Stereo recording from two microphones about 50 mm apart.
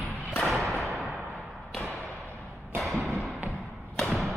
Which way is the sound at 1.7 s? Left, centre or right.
Centre.